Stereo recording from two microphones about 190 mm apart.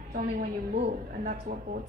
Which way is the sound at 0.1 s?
40° right (ahead or behind).